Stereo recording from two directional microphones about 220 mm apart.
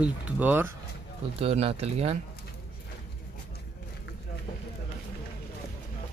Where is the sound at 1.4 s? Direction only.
25° right (ahead or behind).